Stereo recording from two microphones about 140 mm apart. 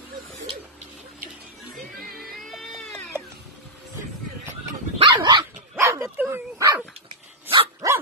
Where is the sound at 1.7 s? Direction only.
85° right.